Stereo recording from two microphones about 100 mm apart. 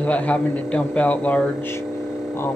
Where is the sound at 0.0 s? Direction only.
15° left (ahead or behind).